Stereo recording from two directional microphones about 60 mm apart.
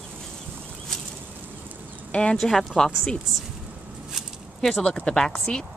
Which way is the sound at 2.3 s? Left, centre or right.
Centre.